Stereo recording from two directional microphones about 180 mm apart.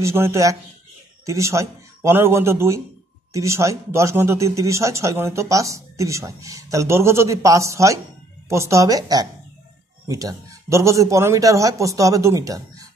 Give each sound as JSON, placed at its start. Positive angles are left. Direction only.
{"t": 0.0, "sound": "a woman's voice", "side_deg": -15}